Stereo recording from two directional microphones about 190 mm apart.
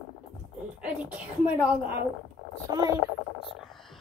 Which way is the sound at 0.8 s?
5° right (ahead or behind).